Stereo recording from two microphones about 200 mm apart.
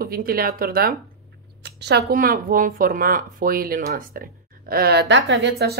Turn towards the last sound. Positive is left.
turn(degrees=-55)  # may be behind; listen again after turning